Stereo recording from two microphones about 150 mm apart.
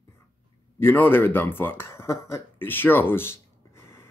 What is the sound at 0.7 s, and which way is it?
Speech, 15° left (ahead or behind).